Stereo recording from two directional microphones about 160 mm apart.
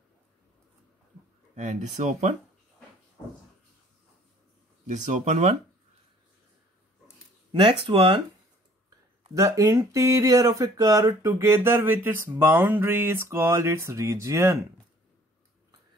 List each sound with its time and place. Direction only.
1.5 s speech: 50° right (ahead or behind)
4.8 s speech: 50° right (ahead or behind)
7.8 s speech: 35° right (ahead or behind)
9.3 s speech: 20° right (ahead or behind)